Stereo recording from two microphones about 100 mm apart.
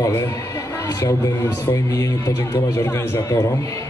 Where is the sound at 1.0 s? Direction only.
30° left (ahead or behind).